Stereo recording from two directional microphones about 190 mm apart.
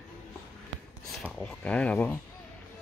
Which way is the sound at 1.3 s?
5° left (ahead or behind).